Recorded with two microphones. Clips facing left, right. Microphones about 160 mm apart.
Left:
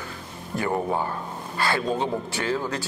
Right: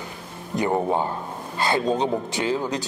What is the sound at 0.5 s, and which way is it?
A man's voice, 20° right (ahead or behind).